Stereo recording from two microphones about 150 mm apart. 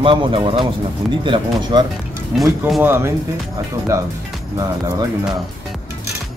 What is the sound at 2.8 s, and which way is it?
Speech, 15° right (ahead or behind).